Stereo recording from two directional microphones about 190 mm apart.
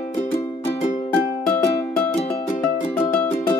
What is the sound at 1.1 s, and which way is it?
Music, 5° left (ahead or behind).